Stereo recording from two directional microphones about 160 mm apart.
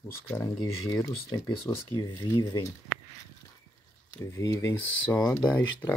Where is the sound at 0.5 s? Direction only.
20° left (ahead or behind).